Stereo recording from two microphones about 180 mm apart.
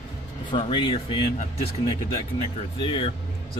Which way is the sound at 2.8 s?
30° left (ahead or behind).